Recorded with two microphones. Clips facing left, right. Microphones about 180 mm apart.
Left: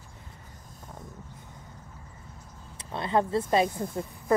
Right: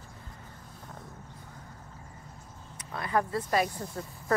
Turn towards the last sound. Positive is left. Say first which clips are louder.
# left 4 dB
turn(degrees=25)  # may be behind; listen again after turning